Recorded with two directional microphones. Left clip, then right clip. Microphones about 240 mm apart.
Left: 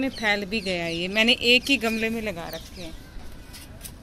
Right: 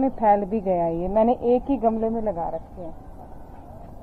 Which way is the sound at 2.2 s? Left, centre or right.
Centre.